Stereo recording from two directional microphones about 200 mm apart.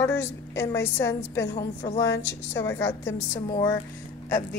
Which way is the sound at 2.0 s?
60° left (ahead or behind).